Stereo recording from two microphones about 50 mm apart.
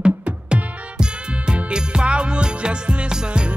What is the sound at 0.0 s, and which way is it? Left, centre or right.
Music, centre.